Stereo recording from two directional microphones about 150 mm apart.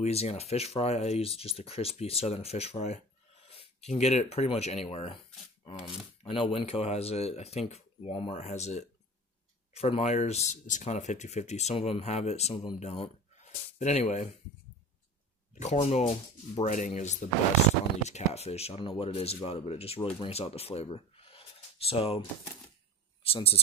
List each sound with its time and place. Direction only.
0.0 s speech: 45° left (ahead or behind)
5.8 s speech: 5° right (ahead or behind)
6.2 s speech: 40° left (ahead or behind)
15.6 s speech: 50° left (ahead or behind)
23.2 s speech: 40° left (ahead or behind)